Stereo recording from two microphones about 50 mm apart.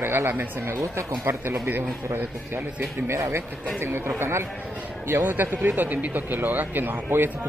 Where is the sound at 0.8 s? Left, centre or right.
Right.